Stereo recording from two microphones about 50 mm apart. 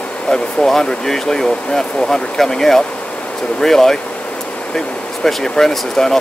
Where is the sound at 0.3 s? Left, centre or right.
Centre.